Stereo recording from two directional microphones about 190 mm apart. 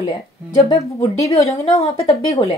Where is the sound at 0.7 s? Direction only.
20° left (ahead or behind).